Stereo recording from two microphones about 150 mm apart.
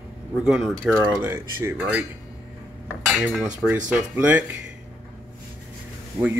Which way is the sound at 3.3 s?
5° right (ahead or behind).